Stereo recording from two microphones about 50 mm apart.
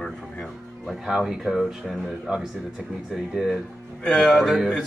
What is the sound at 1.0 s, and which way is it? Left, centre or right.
Speech, centre.